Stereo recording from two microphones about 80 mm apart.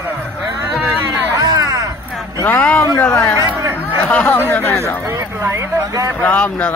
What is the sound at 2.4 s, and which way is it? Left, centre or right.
Speech, left.